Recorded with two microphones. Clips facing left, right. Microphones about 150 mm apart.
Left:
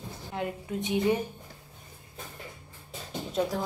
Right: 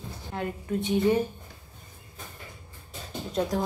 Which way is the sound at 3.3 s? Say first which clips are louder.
Right 2 dB; 5° left (ahead or behind).